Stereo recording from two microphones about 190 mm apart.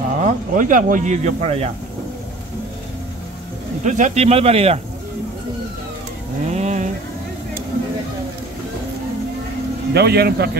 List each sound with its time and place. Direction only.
0.2 s speech: 45° right (ahead or behind)
3.8 s speech: 40° right (ahead or behind)
6.4 s vehicle: 35° right (ahead or behind)
9.9 s speech: 55° right (ahead or behind)